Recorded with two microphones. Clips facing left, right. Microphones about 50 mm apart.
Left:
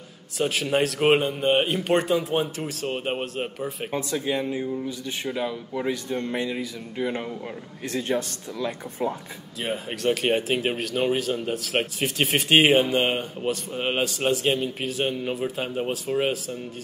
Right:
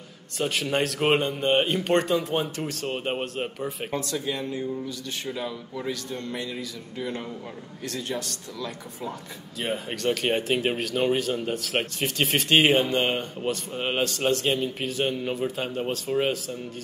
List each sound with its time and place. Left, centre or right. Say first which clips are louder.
0.4 s speech: left 2 dB; centre
3.9 s speech: left 5 dB; centre
9.6 s speech: even; centre